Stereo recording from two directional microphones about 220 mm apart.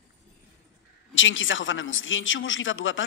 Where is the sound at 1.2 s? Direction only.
60° left (ahead or behind).